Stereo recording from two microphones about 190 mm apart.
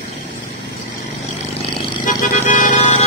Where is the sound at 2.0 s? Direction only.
40° left (ahead or behind).